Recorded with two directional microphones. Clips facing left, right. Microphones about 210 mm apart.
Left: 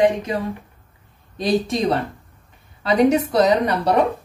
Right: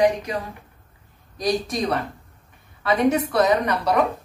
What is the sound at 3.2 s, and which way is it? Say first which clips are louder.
Speech: left 3 dB; 25° left (ahead or behind).